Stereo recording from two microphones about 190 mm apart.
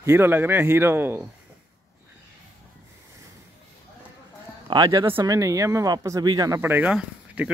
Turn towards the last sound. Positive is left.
turn(degrees=-5)  # may be behind; listen again after turning